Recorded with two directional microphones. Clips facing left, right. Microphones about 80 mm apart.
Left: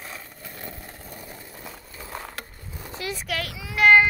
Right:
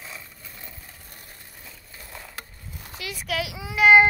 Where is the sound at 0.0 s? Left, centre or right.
Left.